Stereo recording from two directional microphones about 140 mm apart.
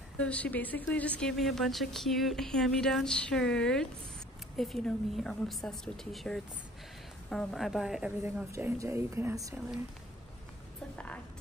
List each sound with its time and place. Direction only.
0.2 s speech: 10° left (ahead or behind)
8.5 s a woman's voice: 20° right (ahead or behind)